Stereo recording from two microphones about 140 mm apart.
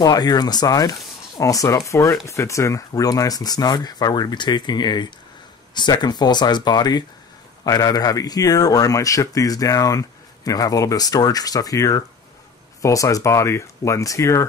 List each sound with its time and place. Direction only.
0.0 s speech: 25° left (ahead or behind)